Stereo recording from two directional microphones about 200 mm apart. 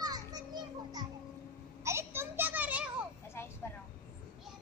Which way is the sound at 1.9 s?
10° right (ahead or behind).